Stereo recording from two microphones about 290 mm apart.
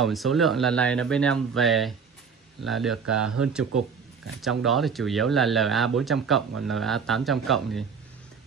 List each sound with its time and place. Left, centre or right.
0.0 s speech: centre